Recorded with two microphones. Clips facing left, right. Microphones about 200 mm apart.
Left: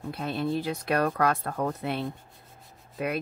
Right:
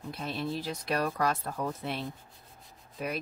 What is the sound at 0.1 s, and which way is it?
Speech, 55° left (ahead or behind).